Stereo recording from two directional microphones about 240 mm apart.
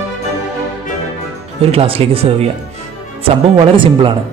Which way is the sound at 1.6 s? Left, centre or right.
Right.